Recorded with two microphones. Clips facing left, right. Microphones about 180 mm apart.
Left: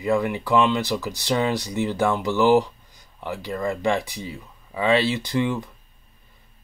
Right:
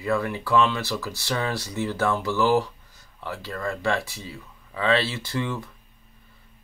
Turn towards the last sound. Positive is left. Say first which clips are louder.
# left 6 dB
turn(degrees=15)  # may be behind; listen again after turning